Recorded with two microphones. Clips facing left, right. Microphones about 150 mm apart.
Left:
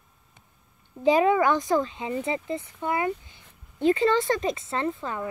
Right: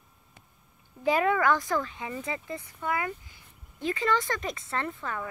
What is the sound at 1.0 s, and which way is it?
A woman's voice, 20° left (ahead or behind).